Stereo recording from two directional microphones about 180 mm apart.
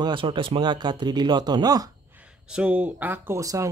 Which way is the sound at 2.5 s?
5° right (ahead or behind).